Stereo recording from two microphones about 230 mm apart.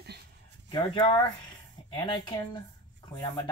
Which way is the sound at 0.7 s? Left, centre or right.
Left.